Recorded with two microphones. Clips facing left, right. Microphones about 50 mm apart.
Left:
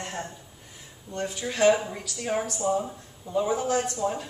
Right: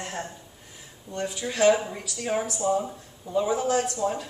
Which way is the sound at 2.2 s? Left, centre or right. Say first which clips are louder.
Right 1 dB; centre.